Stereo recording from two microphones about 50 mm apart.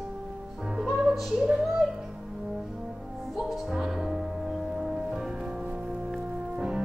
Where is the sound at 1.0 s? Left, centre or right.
Centre.